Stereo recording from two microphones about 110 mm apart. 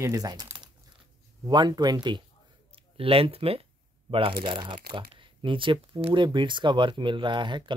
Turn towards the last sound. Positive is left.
turn(degrees=-45)  # may be behind; listen again after turning